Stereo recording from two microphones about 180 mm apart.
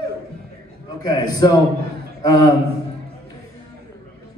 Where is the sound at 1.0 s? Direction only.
20° left (ahead or behind).